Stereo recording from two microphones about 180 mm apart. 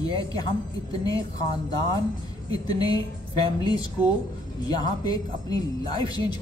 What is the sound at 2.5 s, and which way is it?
Speech, 20° left (ahead or behind).